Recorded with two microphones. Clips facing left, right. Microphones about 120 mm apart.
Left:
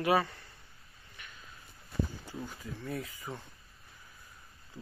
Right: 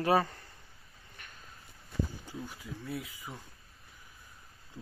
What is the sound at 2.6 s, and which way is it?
Speech, 5° right (ahead or behind).